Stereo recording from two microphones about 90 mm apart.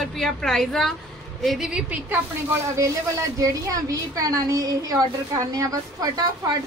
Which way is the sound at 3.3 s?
40° right (ahead or behind).